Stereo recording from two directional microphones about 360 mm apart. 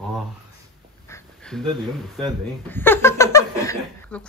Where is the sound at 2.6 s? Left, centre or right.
Centre.